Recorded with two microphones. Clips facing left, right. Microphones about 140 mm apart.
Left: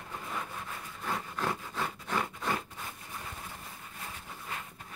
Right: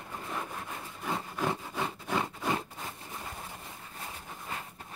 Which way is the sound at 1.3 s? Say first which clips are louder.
Right 2 dB; 15° right (ahead or behind).